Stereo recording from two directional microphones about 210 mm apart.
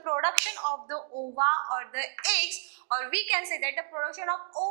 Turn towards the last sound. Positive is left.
turn(degrees=-20)  # may be behind; listen again after turning